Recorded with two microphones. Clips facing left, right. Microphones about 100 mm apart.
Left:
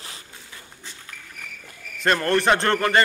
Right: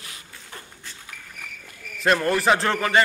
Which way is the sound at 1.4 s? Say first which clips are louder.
Even; centre (ahead or behind).